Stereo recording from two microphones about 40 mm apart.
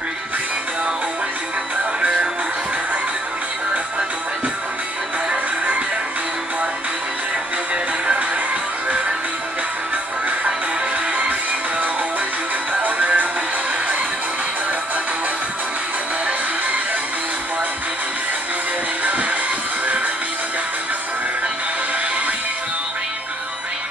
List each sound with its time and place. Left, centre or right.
2.0 s music: right
12.8 s music: right